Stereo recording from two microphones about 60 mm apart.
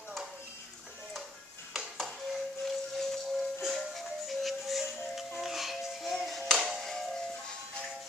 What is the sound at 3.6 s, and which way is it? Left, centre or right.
Music, centre.